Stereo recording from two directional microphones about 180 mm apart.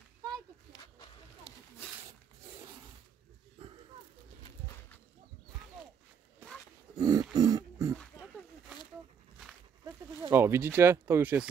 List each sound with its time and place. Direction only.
6.4 s roaring cats: 10° right (ahead or behind)
7.0 s a sound: 20° right (ahead or behind)
9.8 s speech: 15° right (ahead or behind)